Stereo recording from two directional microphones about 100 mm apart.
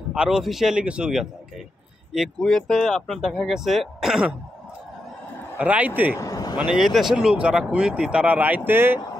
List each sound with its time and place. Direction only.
0.1 s a man's voice: 5° right (ahead or behind)
5.6 s speech: 15° right (ahead or behind)
6.1 s vehicle: 35° left (ahead or behind)
6.6 s speech: 5° right (ahead or behind); by 9.0 s 20° right (ahead or behind)